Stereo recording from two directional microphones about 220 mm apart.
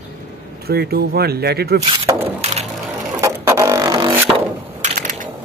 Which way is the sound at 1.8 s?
25° right (ahead or behind).